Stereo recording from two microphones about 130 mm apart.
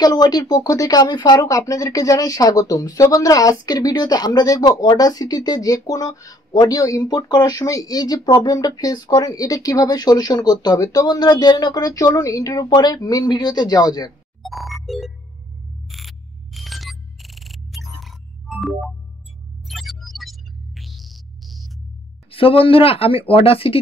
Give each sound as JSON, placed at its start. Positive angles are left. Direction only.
{"t": 0.0, "sound": "speech", "side_deg": 30}
{"t": 14.4, "sound": "music", "side_deg": 0}
{"t": 22.3, "sound": "speech", "side_deg": 45}